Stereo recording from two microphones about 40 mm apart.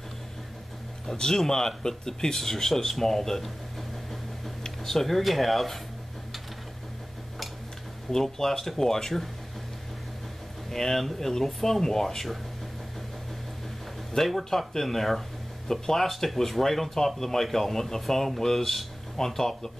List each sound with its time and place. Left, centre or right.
1.1 s speech: centre
4.8 s speech: centre
8.1 s speech: centre
10.7 s speech: centre
14.1 s speech: centre